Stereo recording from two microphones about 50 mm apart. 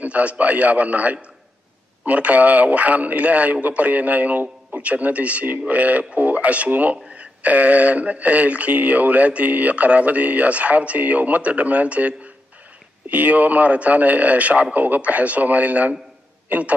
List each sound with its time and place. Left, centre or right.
0.0 s a man's voice: right